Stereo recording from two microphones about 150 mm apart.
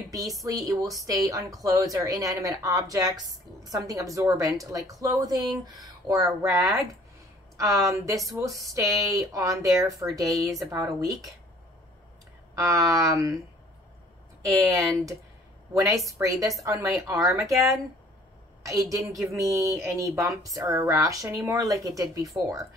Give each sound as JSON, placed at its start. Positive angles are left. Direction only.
{"t": 0.1, "sound": "a woman's voice", "side_deg": -25}
{"t": 12.5, "sound": "a woman's voice", "side_deg": -20}
{"t": 14.4, "sound": "a woman's voice", "side_deg": -20}